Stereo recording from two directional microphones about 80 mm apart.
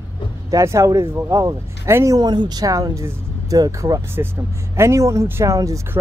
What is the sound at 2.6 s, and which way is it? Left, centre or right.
Speech, right.